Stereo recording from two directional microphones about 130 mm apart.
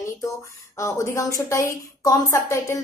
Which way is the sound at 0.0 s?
25° left (ahead or behind).